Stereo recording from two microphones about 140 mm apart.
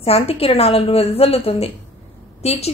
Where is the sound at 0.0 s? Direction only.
45° left (ahead or behind).